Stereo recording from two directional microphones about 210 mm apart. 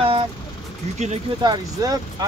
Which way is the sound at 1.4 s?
20° right (ahead or behind).